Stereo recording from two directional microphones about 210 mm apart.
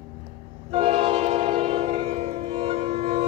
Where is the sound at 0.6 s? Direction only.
30° right (ahead or behind).